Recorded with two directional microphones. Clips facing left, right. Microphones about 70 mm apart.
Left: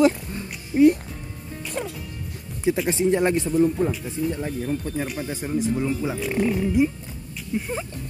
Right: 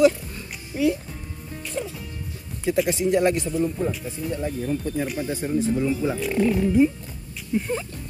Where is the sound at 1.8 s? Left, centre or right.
Left.